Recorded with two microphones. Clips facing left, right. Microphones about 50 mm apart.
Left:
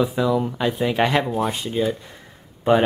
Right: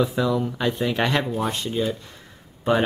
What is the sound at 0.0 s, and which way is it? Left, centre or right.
Speech, centre.